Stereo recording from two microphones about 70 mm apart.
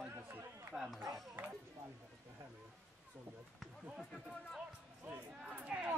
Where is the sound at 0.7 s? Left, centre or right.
Centre.